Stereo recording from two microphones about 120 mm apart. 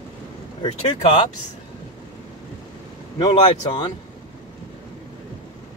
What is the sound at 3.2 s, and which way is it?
Speech, 40° left (ahead or behind).